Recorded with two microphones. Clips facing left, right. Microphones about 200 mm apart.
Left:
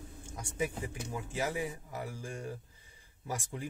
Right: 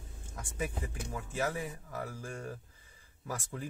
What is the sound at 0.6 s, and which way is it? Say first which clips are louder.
Speech: left 2 dB; 15° left (ahead or behind).